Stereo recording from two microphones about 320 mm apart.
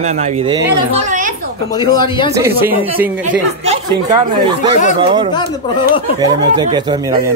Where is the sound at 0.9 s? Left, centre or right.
Right.